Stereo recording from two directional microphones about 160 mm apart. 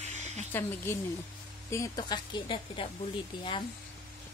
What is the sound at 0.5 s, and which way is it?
Speech, 15° left (ahead or behind).